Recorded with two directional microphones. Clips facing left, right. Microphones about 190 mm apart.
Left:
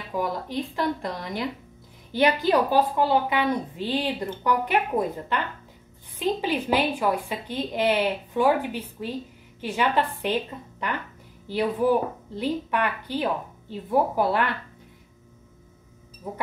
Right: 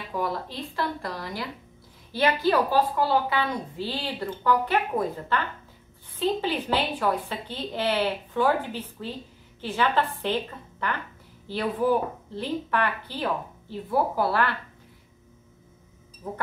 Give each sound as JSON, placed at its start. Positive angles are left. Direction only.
{"t": 0.1, "sound": "a woman's voice", "side_deg": 15}
{"t": 16.2, "sound": "a woman's voice", "side_deg": 10}